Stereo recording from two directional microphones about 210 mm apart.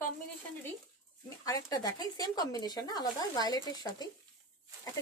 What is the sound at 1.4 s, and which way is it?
Speech, 15° left (ahead or behind).